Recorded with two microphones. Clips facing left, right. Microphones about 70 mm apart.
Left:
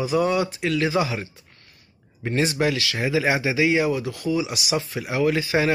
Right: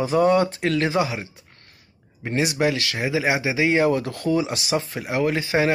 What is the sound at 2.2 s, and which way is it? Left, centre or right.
Speech, centre.